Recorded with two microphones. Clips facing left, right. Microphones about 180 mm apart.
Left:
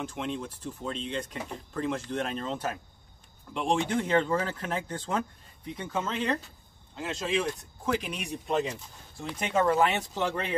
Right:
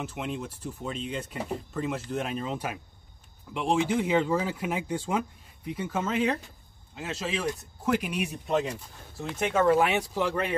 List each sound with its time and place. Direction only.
0.0 s speech: 5° right (ahead or behind)